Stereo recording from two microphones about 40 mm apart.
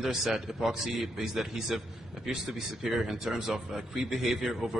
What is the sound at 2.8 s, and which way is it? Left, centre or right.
A man's voice, centre.